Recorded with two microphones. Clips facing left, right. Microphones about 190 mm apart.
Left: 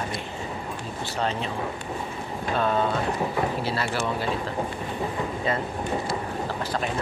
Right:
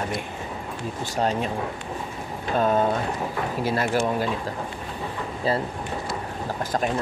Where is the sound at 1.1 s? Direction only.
45° right (ahead or behind).